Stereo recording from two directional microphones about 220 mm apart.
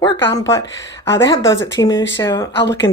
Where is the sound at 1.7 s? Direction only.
15° left (ahead or behind).